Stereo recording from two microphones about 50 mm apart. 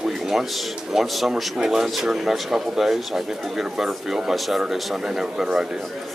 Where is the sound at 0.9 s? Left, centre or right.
Centre.